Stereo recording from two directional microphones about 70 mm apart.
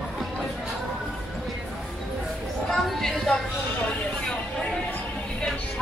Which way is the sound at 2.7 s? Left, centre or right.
Centre.